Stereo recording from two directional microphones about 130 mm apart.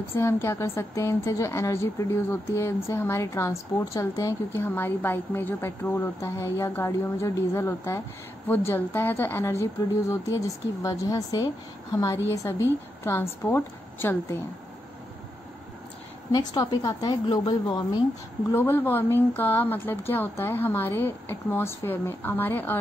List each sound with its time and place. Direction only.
0.1 s a woman's voice: 20° left (ahead or behind)
16.3 s a woman's voice: 30° left (ahead or behind)
18.5 s speech: 15° left (ahead or behind)